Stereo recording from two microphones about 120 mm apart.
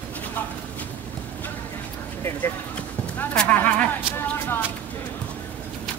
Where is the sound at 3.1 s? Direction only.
10° left (ahead or behind).